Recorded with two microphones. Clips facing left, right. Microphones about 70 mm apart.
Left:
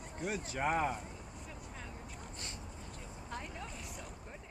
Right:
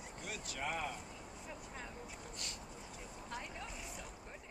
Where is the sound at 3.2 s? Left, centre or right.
Centre.